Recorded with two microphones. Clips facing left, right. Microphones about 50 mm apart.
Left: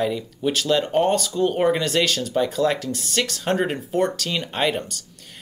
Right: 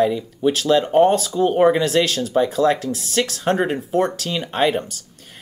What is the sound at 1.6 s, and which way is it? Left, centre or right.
Speech, centre.